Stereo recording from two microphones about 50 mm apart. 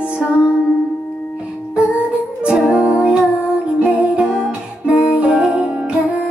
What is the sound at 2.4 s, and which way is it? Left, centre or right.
Music, centre.